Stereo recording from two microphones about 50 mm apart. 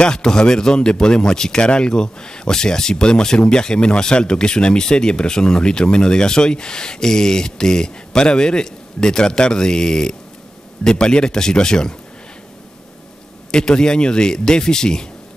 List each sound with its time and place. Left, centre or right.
0.0 s speech: centre
13.5 s speech: centre